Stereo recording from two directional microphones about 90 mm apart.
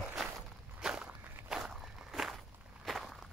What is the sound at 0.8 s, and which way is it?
Walk, 10° right (ahead or behind).